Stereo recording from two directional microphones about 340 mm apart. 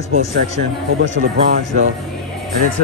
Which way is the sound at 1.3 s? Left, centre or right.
Right.